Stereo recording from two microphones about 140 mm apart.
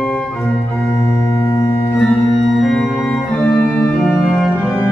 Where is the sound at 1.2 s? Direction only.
25° left (ahead or behind).